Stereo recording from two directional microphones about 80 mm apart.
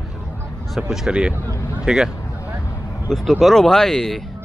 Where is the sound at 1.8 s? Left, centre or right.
Centre.